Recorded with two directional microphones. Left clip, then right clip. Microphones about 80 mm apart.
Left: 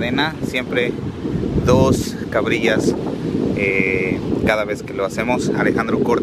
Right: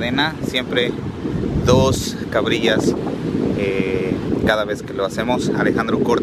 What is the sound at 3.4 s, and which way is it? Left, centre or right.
Sheep, right.